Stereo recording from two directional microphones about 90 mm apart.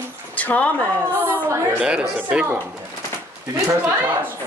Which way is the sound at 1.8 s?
10° right (ahead or behind).